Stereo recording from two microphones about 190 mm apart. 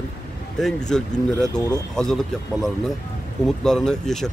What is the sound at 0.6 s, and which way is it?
Speech, 5° left (ahead or behind).